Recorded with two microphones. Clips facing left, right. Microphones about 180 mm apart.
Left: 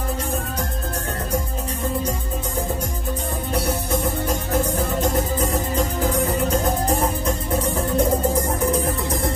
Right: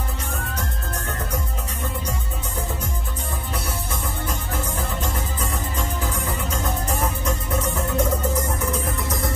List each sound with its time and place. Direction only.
3.5 s music: 50° left (ahead or behind); by 9.2 s 35° left (ahead or behind)